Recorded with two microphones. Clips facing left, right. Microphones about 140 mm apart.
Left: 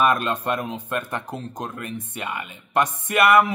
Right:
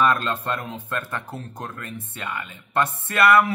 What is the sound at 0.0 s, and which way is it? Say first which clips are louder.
A man's voice: left 1 dB; 15° left (ahead or behind).